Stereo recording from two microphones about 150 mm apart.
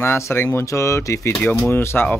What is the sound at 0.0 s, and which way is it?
Speech, 15° left (ahead or behind).